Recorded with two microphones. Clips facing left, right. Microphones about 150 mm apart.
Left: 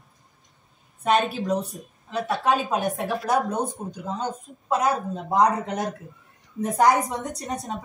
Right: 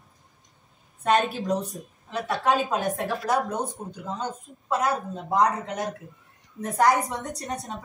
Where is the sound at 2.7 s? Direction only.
20° left (ahead or behind).